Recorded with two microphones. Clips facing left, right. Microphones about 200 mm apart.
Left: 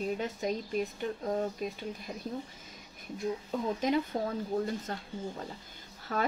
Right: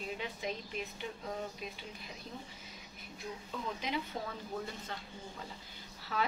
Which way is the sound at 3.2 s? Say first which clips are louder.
Left 9 dB; 45° left (ahead or behind).